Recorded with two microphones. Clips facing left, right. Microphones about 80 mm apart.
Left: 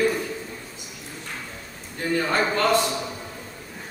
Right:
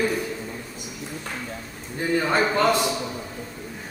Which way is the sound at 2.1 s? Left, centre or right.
Centre.